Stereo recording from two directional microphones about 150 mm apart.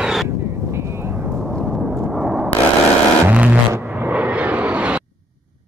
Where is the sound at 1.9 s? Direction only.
15° right (ahead or behind).